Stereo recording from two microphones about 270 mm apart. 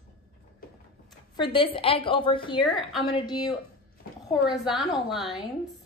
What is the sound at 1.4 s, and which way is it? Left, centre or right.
A woman's voice, centre.